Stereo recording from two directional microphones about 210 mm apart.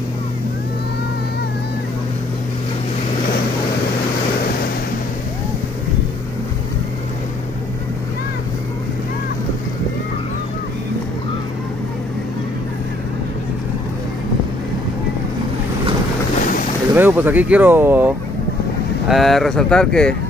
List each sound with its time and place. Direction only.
16.3 s boat: 40° left (ahead or behind)
16.9 s speech: 10° right (ahead or behind)